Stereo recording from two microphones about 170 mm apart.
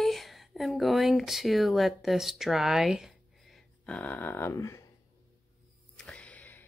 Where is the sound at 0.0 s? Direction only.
Centre (ahead or behind); by 4.8 s 15° left (ahead or behind).